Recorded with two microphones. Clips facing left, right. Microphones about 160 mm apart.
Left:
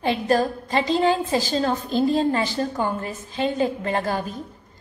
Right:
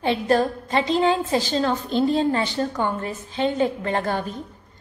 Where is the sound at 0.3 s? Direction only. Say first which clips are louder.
Right 1 dB; 35° left (ahead or behind).